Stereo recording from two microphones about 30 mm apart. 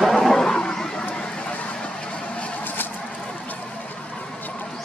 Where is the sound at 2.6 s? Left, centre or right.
Left.